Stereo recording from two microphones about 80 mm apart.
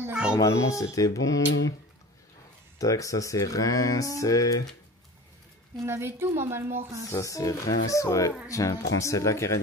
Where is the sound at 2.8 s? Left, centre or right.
Left.